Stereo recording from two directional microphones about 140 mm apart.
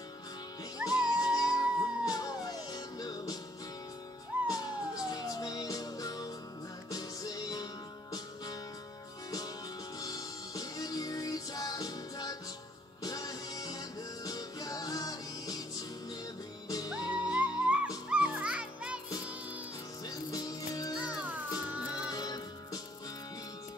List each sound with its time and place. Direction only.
0.8 s music: 25° left (ahead or behind)
4.5 s music: 25° left (ahead or behind)
9.9 s music: 25° left (ahead or behind)
16.6 s music: 25° left (ahead or behind)
16.9 s music: 10° right (ahead or behind)
20.1 s music: 25° left (ahead or behind)
21.0 s music: 10° right (ahead or behind)
22.1 s music: 25° left (ahead or behind)